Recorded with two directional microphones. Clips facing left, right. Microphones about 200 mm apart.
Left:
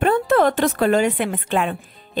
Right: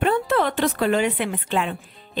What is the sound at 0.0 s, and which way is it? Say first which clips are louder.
A woman's voice: left 4 dB; 45° left (ahead or behind).